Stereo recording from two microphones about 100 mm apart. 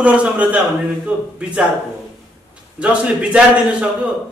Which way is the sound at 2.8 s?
10° right (ahead or behind).